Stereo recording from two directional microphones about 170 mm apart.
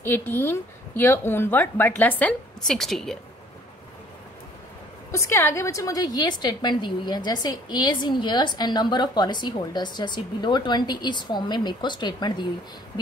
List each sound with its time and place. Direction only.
0.0 s a woman's voice: 10° left (ahead or behind)
5.1 s a woman's voice: 15° left (ahead or behind)